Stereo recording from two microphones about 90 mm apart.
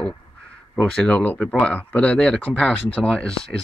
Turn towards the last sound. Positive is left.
turn(degrees=10)  # may be behind; listen again after turning